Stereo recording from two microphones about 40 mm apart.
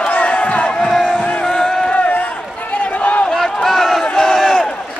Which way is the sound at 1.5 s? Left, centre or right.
Centre.